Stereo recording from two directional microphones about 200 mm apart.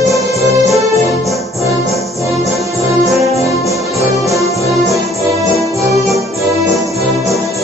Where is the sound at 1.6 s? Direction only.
15° right (ahead or behind).